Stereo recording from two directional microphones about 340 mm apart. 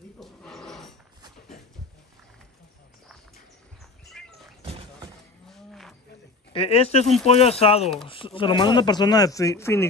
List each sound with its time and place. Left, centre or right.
0.2 s a sound: centre
4.2 s cat: centre
5.5 s cattle: centre
6.5 s speech: centre